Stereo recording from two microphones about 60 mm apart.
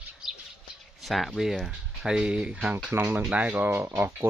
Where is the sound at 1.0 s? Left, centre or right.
Centre.